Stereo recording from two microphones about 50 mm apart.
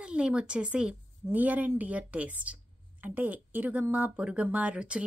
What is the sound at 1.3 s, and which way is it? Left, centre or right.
A woman's voice, right.